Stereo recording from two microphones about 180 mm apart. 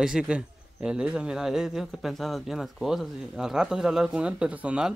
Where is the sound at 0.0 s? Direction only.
5° right (ahead or behind).